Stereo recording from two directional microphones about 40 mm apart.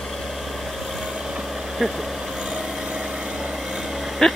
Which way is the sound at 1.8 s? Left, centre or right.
Centre.